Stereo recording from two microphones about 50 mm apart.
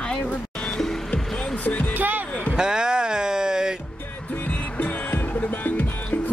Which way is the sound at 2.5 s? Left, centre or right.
Centre.